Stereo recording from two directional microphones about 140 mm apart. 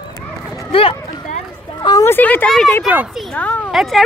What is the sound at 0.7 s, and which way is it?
Speech, 40° left (ahead or behind).